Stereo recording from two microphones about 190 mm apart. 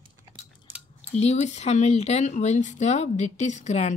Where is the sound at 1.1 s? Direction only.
35° left (ahead or behind).